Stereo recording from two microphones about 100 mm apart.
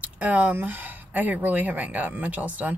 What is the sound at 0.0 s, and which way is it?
Speech, 15° right (ahead or behind).